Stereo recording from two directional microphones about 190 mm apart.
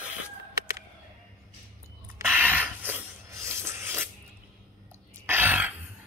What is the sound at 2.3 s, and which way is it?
Rub, 10° right (ahead or behind).